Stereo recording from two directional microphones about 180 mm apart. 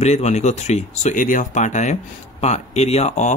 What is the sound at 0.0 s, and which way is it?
Speech, 40° left (ahead or behind).